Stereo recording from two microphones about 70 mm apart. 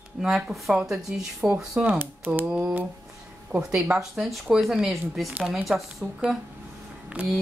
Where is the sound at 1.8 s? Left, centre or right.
Right.